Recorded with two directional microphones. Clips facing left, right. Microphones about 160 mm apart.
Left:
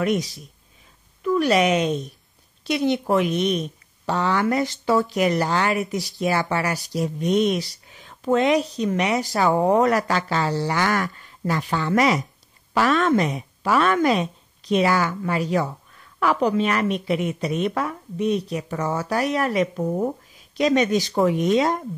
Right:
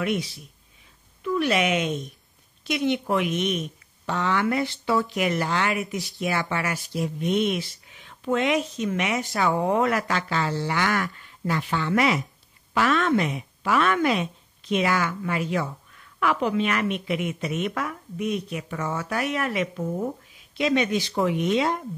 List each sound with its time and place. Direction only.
0.0 s speech: 40° left (ahead or behind)